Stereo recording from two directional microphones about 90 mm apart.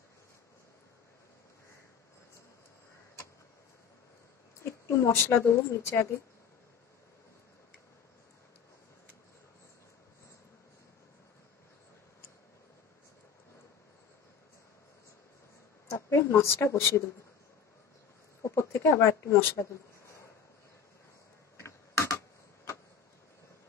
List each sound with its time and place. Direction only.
4.8 s speech: 30° left (ahead or behind)
15.9 s speech: 35° left (ahead or behind)
18.4 s a sound: 30° left (ahead or behind)
21.5 s typing: 30° left (ahead or behind)